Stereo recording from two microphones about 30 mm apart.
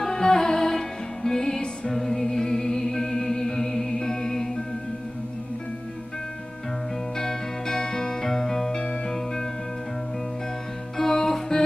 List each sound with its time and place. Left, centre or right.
0.0 s music: left
7.2 s music: left
11.0 s music: centre